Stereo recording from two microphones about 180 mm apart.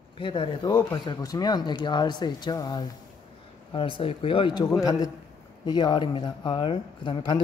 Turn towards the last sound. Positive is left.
turn(degrees=25)  # may be behind; listen again after turning